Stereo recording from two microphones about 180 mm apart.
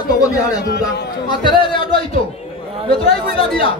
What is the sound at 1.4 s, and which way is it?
A man's voice, 25° left (ahead or behind).